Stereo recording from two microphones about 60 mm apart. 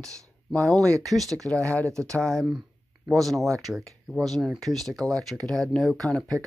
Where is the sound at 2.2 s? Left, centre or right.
Centre.